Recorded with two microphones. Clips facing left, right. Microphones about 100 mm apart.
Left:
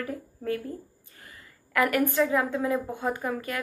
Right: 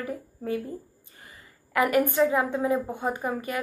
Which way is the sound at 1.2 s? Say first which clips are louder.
Even; 15° right (ahead or behind).